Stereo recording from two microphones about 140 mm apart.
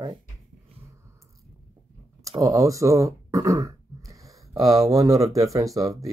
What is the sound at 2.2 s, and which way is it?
Speech, 20° right (ahead or behind).